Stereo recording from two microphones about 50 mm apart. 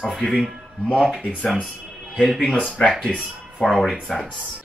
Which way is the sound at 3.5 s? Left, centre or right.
Centre.